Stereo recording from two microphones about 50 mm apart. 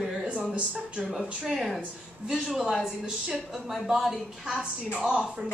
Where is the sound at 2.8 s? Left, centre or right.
Centre.